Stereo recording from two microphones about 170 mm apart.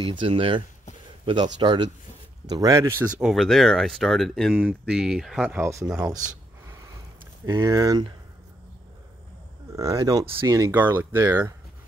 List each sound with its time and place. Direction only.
0.0 s speech: 30° right (ahead or behind)
3.2 s speech: centre (ahead or behind)
5.5 s speech: 15° right (ahead or behind)
5.9 s speech: 5° right (ahead or behind)
7.4 s speech: 15° right (ahead or behind)
9.8 s speech: 20° right (ahead or behind)